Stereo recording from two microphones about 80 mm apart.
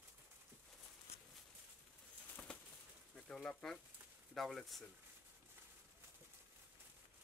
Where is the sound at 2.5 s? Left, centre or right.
Centre.